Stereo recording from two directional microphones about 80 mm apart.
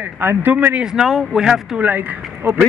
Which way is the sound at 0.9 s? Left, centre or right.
Centre.